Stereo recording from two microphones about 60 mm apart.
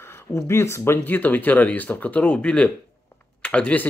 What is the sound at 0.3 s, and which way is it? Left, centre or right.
Speech, left.